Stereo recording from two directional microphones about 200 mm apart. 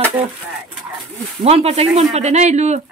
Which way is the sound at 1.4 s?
30° right (ahead or behind).